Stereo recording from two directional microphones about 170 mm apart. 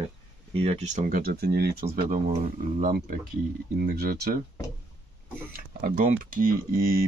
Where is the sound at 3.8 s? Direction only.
60° right (ahead or behind).